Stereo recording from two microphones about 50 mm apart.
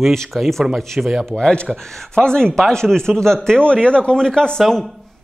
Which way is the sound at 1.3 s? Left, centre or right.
Centre.